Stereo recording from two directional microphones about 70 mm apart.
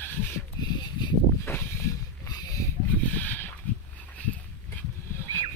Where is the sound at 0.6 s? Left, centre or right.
Left.